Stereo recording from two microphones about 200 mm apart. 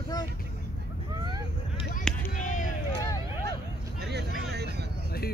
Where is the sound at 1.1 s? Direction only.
20° right (ahead or behind).